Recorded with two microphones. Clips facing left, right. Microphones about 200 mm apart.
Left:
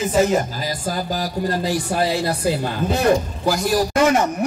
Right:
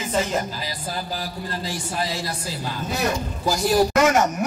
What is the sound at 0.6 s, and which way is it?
Speech, 45° left (ahead or behind).